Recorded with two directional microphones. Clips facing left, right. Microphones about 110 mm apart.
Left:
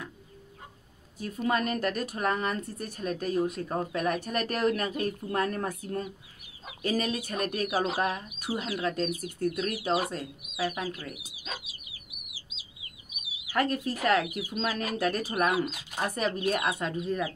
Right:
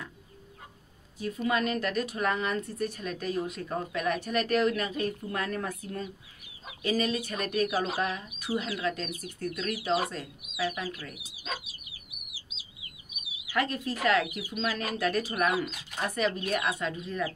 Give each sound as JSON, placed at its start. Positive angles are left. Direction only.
{"t": 1.2, "sound": "a woman's voice", "side_deg": 40}
{"t": 13.5, "sound": "speech", "side_deg": 40}